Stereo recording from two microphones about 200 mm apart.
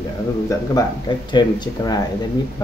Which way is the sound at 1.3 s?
20° left (ahead or behind).